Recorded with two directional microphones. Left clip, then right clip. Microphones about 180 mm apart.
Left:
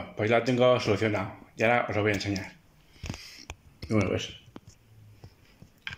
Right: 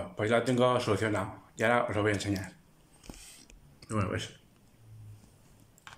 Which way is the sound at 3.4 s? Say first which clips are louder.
Left 10 dB; 15° left (ahead or behind).